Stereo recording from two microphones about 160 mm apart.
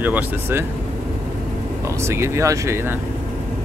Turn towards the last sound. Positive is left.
turn(degrees=-15)  # may be behind; listen again after turning